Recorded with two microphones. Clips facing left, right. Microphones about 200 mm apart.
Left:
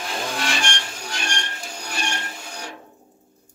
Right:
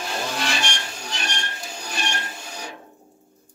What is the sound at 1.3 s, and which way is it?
Printer, 5° right (ahead or behind).